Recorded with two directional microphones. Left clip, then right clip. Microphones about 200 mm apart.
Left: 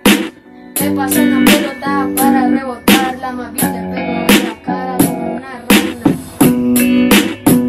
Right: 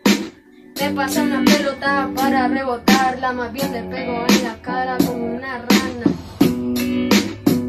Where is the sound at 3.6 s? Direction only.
40° left (ahead or behind).